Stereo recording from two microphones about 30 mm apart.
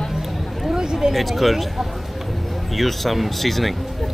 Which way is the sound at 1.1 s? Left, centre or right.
Centre.